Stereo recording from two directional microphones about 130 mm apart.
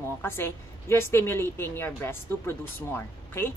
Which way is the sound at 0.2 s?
20° left (ahead or behind).